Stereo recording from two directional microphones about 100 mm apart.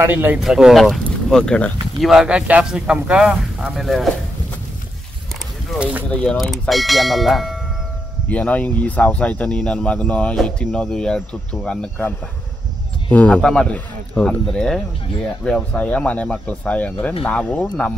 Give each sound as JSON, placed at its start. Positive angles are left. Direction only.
{"t": 0.0, "sound": "speech", "side_deg": -20}
{"t": 0.4, "sound": "speech", "side_deg": -5}
{"t": 2.0, "sound": "speech", "side_deg": -5}
{"t": 5.8, "sound": "speech", "side_deg": -10}
{"t": 6.0, "sound": "speech", "side_deg": 10}
{"t": 6.3, "sound": "speech", "side_deg": 0}
{"t": 8.3, "sound": "speech", "side_deg": 15}
{"t": 13.1, "sound": "speech", "side_deg": 15}